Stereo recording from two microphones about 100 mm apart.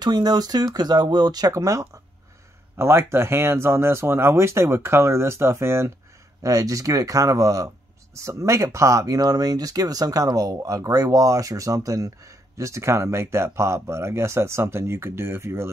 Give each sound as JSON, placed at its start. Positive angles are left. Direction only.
{"t": 0.0, "sound": "speech", "side_deg": -45}